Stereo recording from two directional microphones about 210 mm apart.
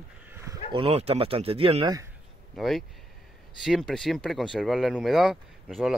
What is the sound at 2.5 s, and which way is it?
Speech, centre (ahead or behind).